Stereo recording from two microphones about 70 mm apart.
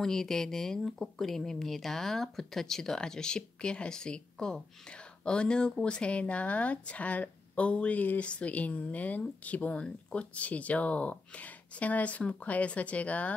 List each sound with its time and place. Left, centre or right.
0.0 s speech: centre